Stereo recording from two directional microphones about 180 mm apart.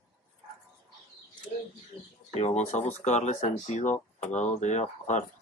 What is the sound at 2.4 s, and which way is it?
Speech, 40° left (ahead or behind).